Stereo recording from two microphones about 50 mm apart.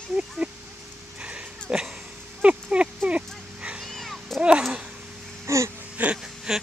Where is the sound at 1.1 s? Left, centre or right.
Right.